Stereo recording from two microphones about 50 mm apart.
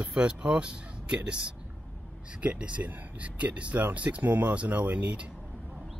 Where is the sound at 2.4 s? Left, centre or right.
Right.